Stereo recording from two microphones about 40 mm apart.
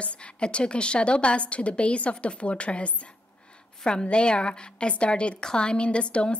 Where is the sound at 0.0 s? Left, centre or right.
Left.